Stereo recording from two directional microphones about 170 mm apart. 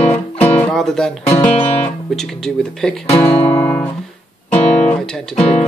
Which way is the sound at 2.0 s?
Centre (ahead or behind).